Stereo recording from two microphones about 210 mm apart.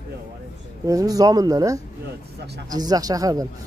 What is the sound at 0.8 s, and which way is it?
Speech, 15° right (ahead or behind).